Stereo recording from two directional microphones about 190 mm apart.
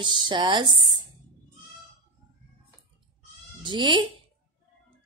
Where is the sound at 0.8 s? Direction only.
25° right (ahead or behind).